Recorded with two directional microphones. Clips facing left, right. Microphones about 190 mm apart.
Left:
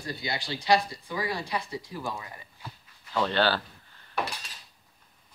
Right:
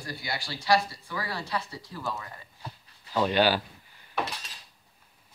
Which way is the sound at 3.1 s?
15° right (ahead or behind).